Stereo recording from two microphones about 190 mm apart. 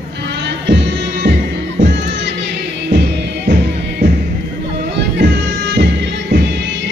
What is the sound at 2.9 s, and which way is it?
Music, 60° right (ahead or behind).